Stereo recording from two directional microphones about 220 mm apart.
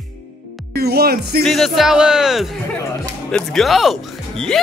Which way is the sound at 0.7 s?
45° right (ahead or behind).